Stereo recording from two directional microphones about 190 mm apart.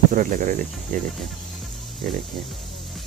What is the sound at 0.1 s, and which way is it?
Speech, 45° right (ahead or behind).